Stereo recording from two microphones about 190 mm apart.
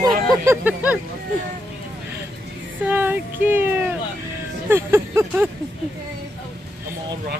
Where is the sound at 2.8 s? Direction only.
10° right (ahead or behind).